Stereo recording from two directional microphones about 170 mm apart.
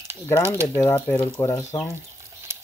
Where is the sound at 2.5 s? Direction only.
15° right (ahead or behind).